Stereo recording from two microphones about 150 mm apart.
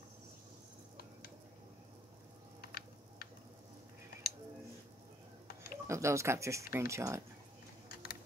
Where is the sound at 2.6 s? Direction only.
90° left.